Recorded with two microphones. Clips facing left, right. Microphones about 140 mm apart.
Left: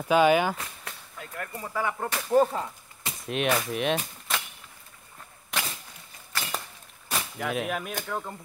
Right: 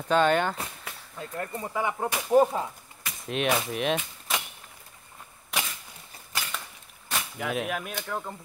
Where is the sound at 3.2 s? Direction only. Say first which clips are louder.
Even; centre (ahead or behind).